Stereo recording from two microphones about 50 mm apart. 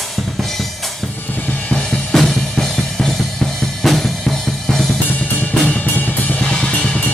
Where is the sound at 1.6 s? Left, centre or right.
Centre.